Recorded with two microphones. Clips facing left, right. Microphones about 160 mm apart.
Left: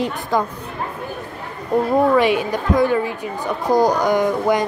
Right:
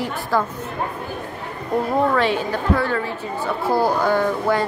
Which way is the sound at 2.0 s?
15° left (ahead or behind).